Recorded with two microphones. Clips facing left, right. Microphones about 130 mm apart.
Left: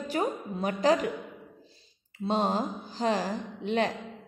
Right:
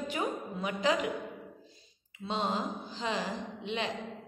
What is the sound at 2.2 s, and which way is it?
A woman's voice, 40° left (ahead or behind).